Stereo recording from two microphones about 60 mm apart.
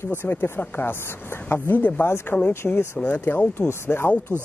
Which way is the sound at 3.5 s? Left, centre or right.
Left.